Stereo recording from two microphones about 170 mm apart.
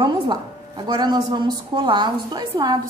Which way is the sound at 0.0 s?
25° right (ahead or behind).